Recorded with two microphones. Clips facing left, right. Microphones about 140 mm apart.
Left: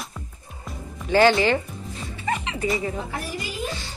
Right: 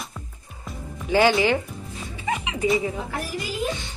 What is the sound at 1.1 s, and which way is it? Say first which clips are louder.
Speech: left 1 dB; 10° right (ahead or behind).